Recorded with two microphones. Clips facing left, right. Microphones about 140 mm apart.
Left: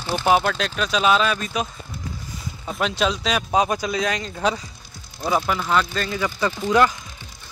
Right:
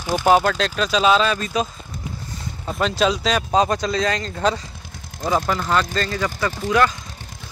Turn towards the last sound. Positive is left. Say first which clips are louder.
# left 1 dB
turn(degrees=15)  # may be behind; listen again after turning